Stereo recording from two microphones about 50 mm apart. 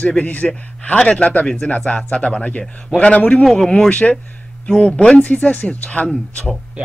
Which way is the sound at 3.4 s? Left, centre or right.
Centre.